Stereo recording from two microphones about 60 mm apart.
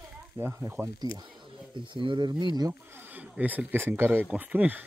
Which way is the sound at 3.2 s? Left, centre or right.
Right.